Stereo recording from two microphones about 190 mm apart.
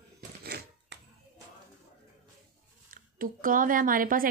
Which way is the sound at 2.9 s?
45° right (ahead or behind).